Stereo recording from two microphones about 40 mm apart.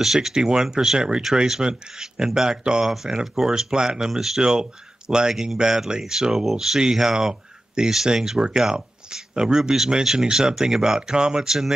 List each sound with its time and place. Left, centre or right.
0.0 s speech: centre
2.9 s speech: centre